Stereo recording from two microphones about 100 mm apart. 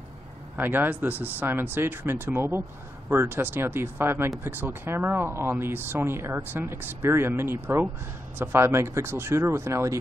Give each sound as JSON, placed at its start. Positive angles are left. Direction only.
{"t": 0.6, "sound": "speech", "side_deg": -20}